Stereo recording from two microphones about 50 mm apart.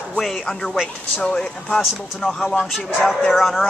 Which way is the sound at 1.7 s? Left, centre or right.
Centre.